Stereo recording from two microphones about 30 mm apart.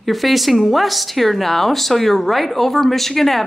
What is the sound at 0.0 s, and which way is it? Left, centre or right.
Speech, centre.